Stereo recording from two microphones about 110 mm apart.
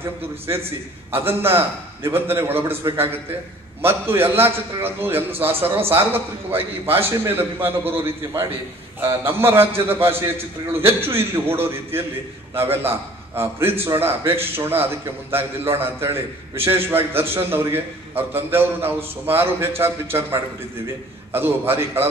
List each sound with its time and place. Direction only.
0.0 s a man's voice: 20° right (ahead or behind)